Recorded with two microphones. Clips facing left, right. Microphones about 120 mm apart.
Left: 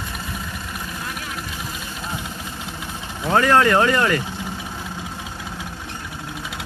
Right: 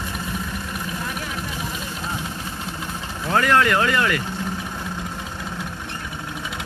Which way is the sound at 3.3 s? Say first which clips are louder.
Left 3 dB; 30° left (ahead or behind).